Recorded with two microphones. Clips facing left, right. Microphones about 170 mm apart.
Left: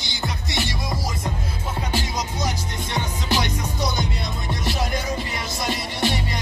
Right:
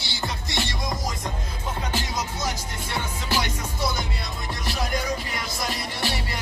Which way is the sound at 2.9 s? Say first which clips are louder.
Left 3 dB; 15° left (ahead or behind).